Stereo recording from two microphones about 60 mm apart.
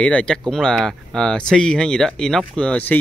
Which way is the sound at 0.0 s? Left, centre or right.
Centre.